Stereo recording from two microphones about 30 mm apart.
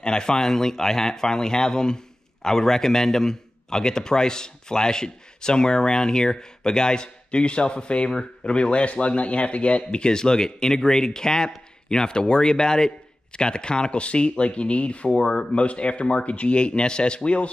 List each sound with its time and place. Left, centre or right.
0.0 s a man's voice: left
15.0 s a man's voice: left
15.5 s speech: left